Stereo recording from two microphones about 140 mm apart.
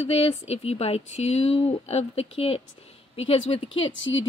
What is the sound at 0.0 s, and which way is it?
Speech, 45° left (ahead or behind).